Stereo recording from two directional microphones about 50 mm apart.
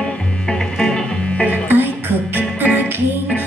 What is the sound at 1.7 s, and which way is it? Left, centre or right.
Music, right.